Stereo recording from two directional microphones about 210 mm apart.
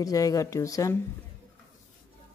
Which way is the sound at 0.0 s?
15° left (ahead or behind).